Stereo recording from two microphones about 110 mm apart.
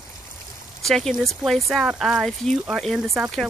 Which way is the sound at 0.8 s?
5° left (ahead or behind).